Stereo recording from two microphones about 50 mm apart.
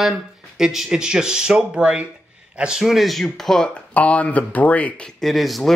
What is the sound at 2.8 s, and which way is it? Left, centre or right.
Speech, centre.